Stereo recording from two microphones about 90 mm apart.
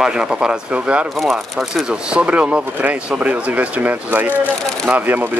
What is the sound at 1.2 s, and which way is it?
Speech, centre (ahead or behind).